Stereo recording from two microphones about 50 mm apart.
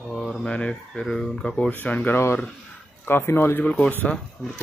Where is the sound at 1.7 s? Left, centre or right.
Left.